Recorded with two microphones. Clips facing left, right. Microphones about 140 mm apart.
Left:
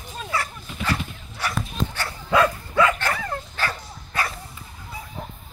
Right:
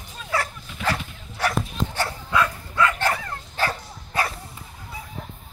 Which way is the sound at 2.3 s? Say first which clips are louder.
Left 5 dB; 90° left.